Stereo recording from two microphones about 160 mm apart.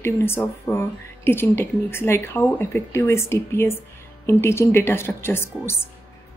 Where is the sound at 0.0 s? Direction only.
15° left (ahead or behind).